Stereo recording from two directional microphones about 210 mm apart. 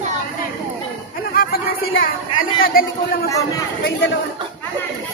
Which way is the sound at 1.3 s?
45° left (ahead or behind).